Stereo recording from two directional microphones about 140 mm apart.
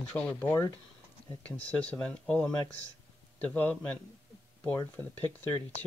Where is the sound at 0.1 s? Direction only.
10° left (ahead or behind).